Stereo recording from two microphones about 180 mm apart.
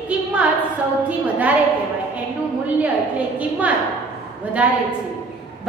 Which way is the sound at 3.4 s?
10° right (ahead or behind).